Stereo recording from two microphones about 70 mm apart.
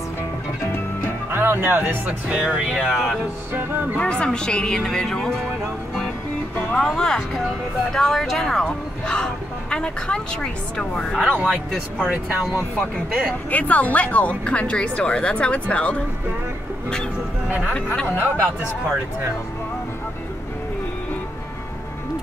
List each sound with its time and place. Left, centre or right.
1.3 s music: right
2.0 s music: centre
2.7 s speech: centre
3.5 s music: right
4.0 s speech: centre
7.0 s speech: centre
11.1 s music: centre
11.7 s speech: centre
13.5 s speech: left
18.1 s music: right